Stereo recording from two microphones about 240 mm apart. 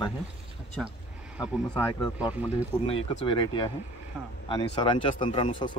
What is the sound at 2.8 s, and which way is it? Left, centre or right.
Speech, left.